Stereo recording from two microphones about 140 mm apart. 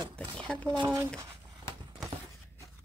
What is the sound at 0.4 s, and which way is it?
Speech, 5° left (ahead or behind).